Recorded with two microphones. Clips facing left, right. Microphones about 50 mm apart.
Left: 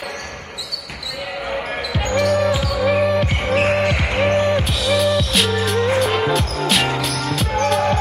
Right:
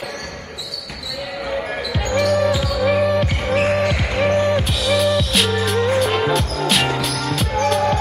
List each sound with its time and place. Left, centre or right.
1.5 s basketball bounce: left
2.1 s basketball bounce: centre
4.2 s music: centre
4.5 s music: centre